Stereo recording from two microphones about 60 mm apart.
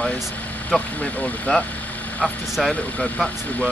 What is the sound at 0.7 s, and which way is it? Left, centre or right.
Speech, centre.